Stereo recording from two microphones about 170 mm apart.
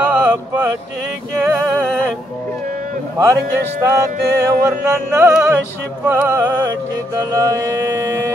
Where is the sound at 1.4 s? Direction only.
10° right (ahead or behind).